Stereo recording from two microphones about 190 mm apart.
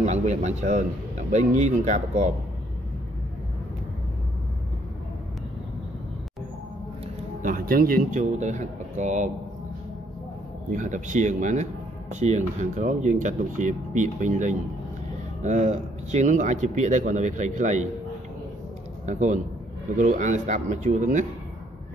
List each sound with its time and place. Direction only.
0.0 s speech: 35° right (ahead or behind)
7.4 s speech: 50° right (ahead or behind)
10.7 s speech: 40° right (ahead or behind)
19.0 s speech: 40° right (ahead or behind)